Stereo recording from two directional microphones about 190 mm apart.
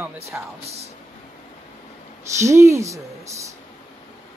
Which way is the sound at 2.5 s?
15° right (ahead or behind).